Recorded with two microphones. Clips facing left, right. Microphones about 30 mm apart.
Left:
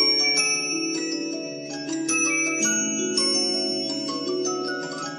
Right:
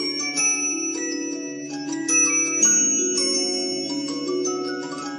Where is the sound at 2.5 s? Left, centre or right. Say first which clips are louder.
Right 2 dB; left.